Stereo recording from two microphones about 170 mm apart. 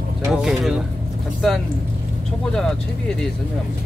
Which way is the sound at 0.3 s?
Centre (ahead or behind).